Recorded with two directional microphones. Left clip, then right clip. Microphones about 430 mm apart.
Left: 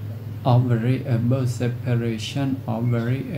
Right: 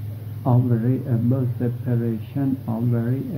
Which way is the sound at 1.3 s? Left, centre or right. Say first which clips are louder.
Even; centre.